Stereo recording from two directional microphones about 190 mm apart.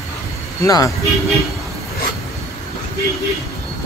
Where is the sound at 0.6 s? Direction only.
15° left (ahead or behind).